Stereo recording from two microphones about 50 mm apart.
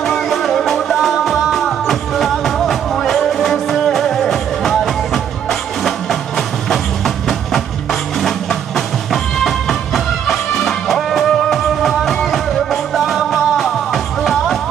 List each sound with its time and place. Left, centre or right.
0.0 s music: centre